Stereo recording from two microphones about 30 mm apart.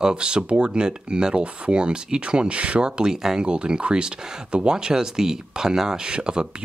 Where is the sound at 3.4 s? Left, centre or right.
Right.